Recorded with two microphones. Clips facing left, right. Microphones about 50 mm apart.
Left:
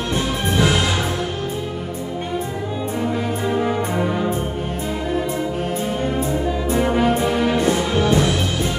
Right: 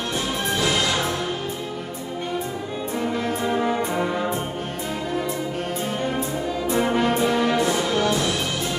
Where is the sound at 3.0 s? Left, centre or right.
Centre.